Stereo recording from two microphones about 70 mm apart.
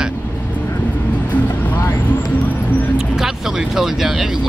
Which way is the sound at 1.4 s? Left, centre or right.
Left.